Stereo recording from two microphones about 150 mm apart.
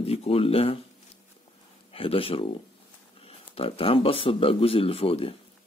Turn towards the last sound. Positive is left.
turn(degrees=40)  # may be behind; listen again after turning